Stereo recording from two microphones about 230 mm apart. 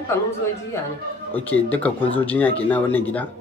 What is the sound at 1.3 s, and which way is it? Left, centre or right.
Speech, centre.